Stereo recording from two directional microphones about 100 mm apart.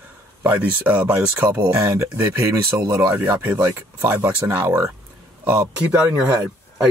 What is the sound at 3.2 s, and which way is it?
Speech, 20° right (ahead or behind).